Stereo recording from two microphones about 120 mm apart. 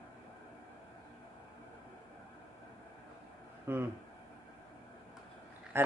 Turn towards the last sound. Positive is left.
turn(degrees=-20)  # may be behind; listen again after turning